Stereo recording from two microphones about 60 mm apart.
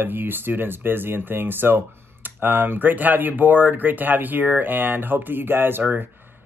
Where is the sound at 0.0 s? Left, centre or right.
Right.